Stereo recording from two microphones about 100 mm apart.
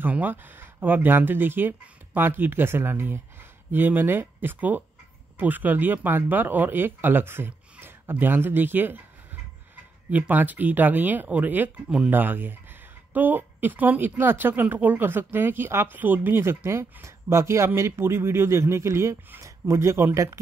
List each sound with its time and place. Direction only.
0.0 s speech: 20° right (ahead or behind)